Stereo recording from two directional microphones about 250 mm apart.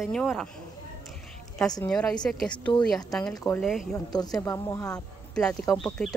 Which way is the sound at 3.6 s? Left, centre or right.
Centre.